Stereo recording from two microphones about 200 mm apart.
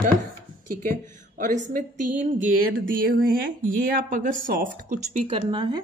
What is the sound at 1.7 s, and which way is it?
A woman's voice, 40° right (ahead or behind).